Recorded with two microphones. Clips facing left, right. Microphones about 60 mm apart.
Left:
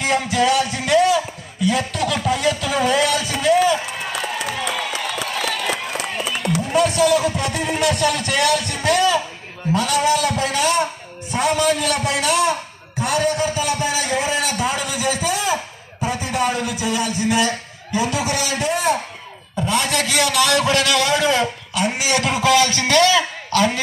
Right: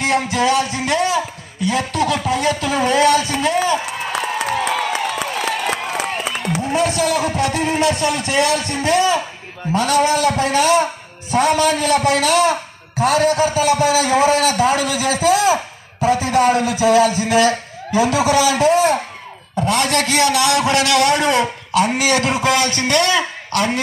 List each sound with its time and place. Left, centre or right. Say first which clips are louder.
0.0 s music: right 2 dB; right
0.6 s a man's voice: left 1 dB; right
2.3 s a sound: right 2 dB; right
3.1 s a man's voice: right 3 dB; right
3.5 s a sound: left 1 dB; right
5.0 s a sound: right 3 dB; right
5.7 s run: right 3 dB; right
6.5 s a sound: left 1 dB; right
7.0 s a man's voice: left 2 dB; right
7.3 s music: right 4 dB; right
7.8 s a man's voice: left 2 dB; right
9.8 s a man's voice: right 3 dB; right
19.6 s a man's voice: right 3 dB; right